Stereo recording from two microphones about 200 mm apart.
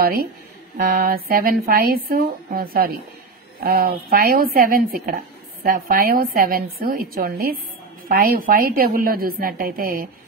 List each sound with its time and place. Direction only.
0.8 s a woman's voice: 45° right (ahead or behind)